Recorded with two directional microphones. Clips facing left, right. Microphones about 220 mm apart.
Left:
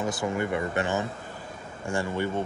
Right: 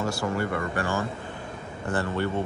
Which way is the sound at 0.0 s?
20° left (ahead or behind).